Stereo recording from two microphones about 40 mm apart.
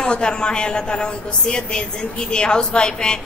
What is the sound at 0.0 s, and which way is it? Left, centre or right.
A woman's voice, left.